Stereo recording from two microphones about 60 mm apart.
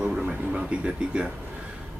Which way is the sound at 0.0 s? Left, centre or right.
Centre.